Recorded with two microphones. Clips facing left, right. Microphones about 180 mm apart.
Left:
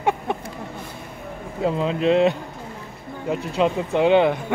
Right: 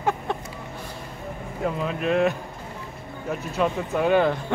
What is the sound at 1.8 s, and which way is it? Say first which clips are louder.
Speech: left 5 dB; 25° left (ahead or behind).